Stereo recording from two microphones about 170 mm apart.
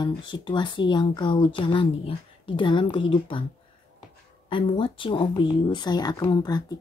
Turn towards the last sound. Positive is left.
turn(degrees=20)  # may be behind; listen again after turning